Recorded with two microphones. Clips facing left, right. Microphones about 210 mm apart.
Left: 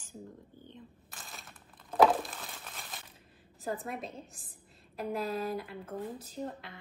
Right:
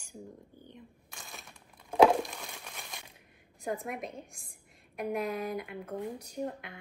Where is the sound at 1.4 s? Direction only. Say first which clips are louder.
Even; 15° right (ahead or behind).